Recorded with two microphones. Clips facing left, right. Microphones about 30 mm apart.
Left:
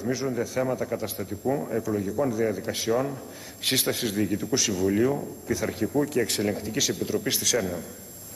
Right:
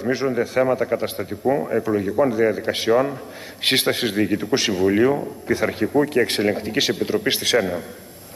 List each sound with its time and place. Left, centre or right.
0.0 s a man's voice: right